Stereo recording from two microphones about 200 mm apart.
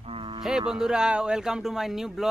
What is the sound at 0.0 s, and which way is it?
Cattle, 25° right (ahead or behind).